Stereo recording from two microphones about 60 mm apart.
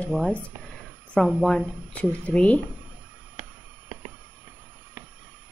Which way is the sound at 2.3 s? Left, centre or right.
Left.